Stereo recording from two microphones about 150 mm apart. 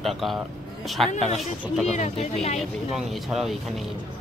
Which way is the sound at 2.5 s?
Centre (ahead or behind).